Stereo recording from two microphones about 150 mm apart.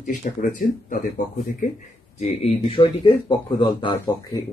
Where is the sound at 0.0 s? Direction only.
60° left (ahead or behind).